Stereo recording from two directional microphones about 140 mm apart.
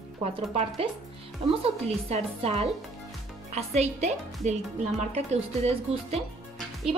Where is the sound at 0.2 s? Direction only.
50° right (ahead or behind).